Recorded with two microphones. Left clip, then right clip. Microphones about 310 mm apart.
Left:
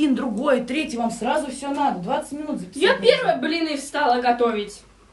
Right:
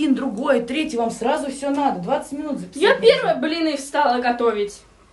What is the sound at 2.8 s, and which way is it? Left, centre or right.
A woman's voice, centre.